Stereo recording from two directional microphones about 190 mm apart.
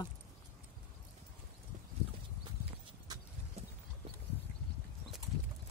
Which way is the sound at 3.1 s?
20° right (ahead or behind).